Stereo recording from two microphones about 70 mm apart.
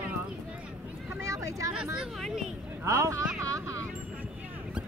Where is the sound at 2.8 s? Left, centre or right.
Right.